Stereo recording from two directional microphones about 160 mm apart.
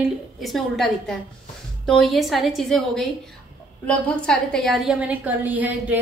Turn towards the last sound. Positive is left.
turn(degrees=-10)  # may be behind; listen again after turning